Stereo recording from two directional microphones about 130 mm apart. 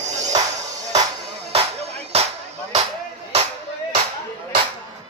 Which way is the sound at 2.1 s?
55° right (ahead or behind).